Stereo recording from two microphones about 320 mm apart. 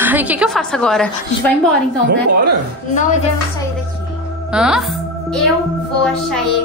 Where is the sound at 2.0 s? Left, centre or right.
Right.